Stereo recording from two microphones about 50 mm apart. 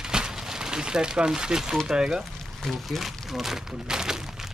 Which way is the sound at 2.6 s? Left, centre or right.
Centre.